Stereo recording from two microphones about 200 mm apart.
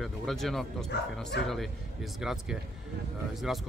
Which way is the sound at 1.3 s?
55° left (ahead or behind).